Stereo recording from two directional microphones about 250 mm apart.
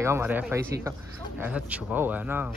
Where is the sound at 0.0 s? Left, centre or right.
Centre.